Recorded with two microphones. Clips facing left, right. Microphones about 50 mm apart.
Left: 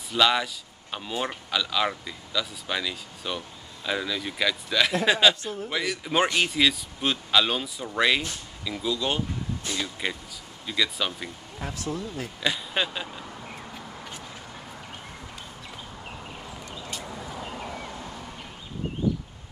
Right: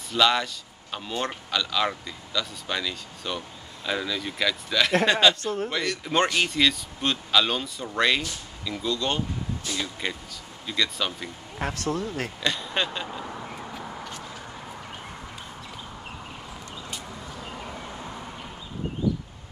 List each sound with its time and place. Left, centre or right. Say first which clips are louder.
0.1 s speech: even; centre
11.6 s speech: right 4 dB; right
12.4 s speech: left 1 dB; centre
18.0 s a sound: right 2 dB; centre